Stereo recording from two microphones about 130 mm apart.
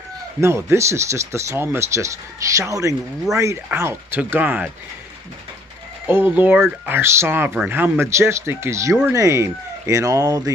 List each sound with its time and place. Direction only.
0.4 s speech: 20° right (ahead or behind)
6.0 s speech: 15° right (ahead or behind)